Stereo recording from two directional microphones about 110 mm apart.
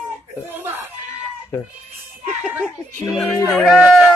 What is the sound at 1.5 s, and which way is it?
Speech, 20° left (ahead or behind).